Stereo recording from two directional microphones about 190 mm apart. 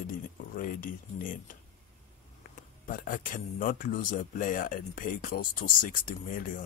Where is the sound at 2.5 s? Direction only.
45° left (ahead or behind).